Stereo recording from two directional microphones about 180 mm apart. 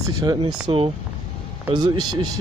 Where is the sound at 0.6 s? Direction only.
30° right (ahead or behind).